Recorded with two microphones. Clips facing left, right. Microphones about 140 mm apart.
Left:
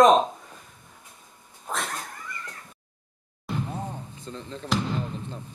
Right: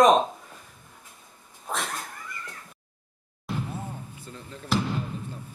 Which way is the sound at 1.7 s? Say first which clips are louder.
Even; centre (ahead or behind).